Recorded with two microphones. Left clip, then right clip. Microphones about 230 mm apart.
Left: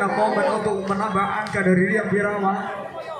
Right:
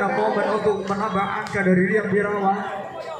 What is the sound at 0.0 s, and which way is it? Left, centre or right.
A man's voice, left.